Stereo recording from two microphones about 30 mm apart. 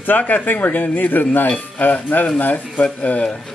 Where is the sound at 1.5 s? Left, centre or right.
Left.